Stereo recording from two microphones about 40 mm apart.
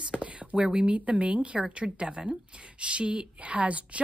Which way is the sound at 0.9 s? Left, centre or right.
Right.